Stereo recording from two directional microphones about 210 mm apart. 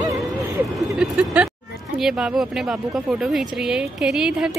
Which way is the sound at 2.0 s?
Centre (ahead or behind).